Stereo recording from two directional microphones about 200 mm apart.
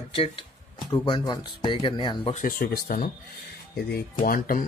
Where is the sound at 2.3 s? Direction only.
45° left (ahead or behind).